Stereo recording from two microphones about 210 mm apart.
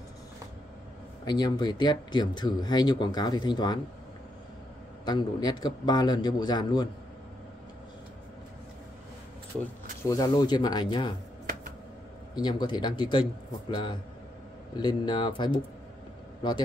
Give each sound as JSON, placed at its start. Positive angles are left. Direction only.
{"t": 1.2, "sound": "speech", "side_deg": 20}
{"t": 5.0, "sound": "speech", "side_deg": 20}
{"t": 10.0, "sound": "speech", "side_deg": 15}
{"t": 12.4, "sound": "speech", "side_deg": 20}